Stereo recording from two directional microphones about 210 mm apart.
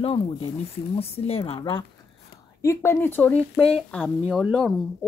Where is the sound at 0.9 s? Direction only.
30° left (ahead or behind).